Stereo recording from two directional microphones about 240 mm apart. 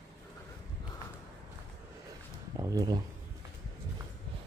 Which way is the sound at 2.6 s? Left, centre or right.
Centre.